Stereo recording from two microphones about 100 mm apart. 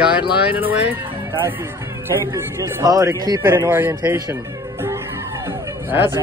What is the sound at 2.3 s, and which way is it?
Speech, 35° right (ahead or behind).